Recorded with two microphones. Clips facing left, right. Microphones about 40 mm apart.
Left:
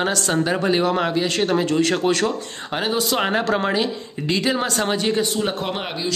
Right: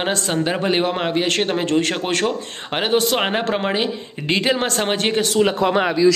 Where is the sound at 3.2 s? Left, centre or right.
Right.